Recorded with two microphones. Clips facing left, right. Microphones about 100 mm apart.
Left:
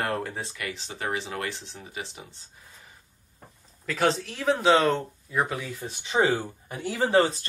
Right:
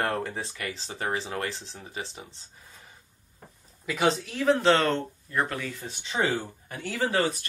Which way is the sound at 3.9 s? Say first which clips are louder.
Even; centre (ahead or behind).